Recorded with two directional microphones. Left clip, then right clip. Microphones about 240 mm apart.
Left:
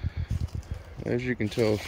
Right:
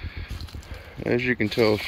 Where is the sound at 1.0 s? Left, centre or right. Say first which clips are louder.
Right 6 dB; centre.